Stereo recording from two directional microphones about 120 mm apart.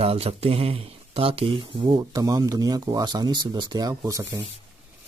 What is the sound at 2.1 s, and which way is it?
Speech, 30° right (ahead or behind).